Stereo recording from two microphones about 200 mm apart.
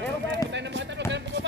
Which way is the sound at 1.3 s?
60° right (ahead or behind).